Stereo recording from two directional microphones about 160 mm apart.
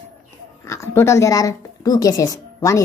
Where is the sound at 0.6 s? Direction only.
20° left (ahead or behind).